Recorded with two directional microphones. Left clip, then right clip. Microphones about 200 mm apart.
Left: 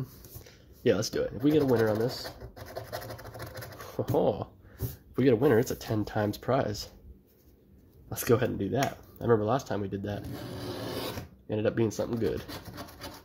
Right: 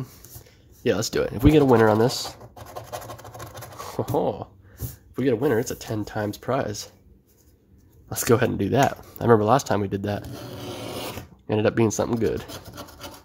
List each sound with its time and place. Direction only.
0.8 s speech: 15° right (ahead or behind)
2.5 s scratch: 5° right (ahead or behind)
4.1 s speech: 5° right (ahead or behind)
8.1 s speech: 20° right (ahead or behind)
11.4 s speech: 25° right (ahead or behind)
12.5 s filing: 5° right (ahead or behind)